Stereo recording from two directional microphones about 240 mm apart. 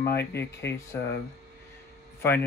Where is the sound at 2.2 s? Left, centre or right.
Centre.